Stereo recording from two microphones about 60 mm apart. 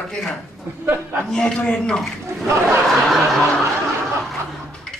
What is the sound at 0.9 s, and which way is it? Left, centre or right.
Speech, right.